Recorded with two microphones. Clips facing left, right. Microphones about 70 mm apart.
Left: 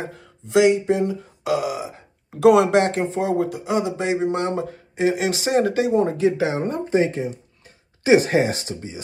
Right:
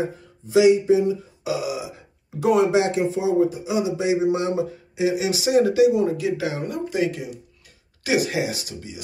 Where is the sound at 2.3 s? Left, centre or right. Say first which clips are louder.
Left 4 dB; left.